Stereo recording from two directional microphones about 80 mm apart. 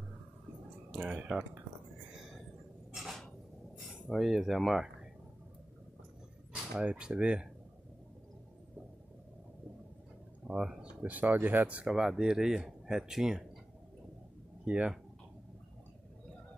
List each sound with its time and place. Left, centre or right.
1.1 s speech: centre
2.1 s a sound: centre
4.1 s speech: centre
6.5 s speech: centre
10.4 s speech: centre
11.0 s speech: centre
14.6 s speech: centre